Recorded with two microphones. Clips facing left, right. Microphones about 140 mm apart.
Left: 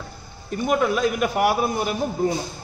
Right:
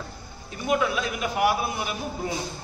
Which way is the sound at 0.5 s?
50° left (ahead or behind).